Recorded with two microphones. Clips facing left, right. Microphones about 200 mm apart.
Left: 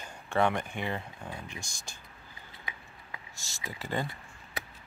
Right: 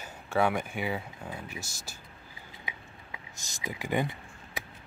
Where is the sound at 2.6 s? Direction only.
15° right (ahead or behind).